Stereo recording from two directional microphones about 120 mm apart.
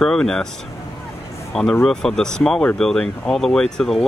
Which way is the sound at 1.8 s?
5° left (ahead or behind).